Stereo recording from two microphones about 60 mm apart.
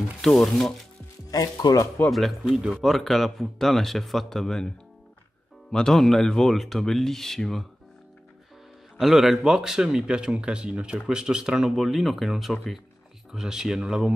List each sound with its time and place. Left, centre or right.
0.2 s speech: centre
1.3 s speech: left
2.0 s speech: centre
5.7 s speech: centre
9.0 s speech: centre